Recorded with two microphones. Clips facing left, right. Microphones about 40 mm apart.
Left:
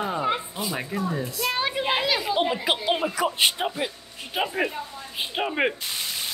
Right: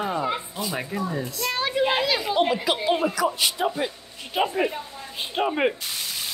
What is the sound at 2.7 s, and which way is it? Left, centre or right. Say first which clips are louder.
Speech: right 2 dB; left.